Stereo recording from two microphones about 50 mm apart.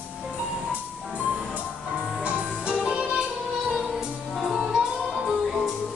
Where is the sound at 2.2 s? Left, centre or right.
Right.